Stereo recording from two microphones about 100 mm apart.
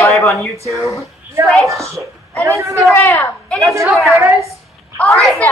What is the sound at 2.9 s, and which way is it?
Speech, 20° left (ahead or behind).